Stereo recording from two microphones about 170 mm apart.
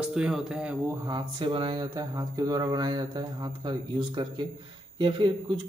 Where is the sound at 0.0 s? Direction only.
5° right (ahead or behind).